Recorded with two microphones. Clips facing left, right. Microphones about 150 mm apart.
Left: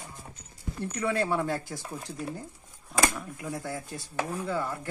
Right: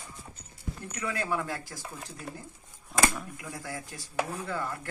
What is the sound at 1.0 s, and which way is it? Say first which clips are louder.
Speech: left 4 dB; 25° left (ahead or behind).